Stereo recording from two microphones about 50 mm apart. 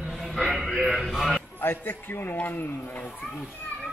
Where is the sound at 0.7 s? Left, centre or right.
Centre.